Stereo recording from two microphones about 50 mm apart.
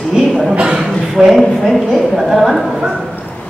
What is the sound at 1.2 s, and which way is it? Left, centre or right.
A woman's voice, centre.